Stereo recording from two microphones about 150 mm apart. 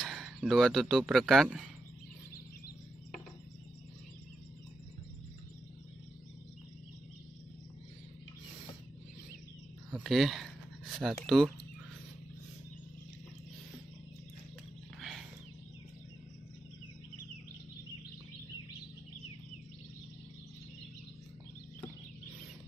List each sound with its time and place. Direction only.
0.0 s speech: centre (ahead or behind)
9.9 s speech: centre (ahead or behind)
15.0 s wild animals: centre (ahead or behind)